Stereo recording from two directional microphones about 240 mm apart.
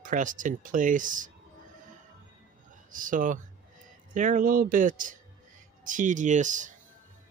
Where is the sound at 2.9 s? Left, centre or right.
Right.